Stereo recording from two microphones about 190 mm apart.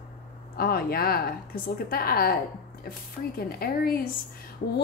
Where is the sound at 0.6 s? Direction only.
50° left (ahead or behind).